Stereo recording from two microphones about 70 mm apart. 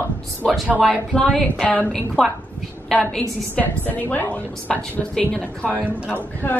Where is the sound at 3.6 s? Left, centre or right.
Left.